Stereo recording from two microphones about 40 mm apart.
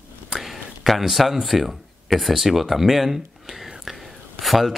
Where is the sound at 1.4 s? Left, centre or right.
Centre.